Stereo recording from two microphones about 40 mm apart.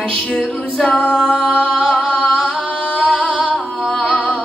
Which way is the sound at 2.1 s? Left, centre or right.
Centre.